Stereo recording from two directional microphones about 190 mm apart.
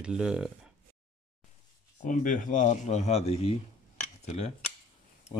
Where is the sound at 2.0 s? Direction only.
45° left (ahead or behind).